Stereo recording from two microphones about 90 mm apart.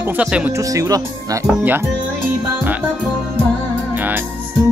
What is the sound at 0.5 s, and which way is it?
Speech, 40° right (ahead or behind).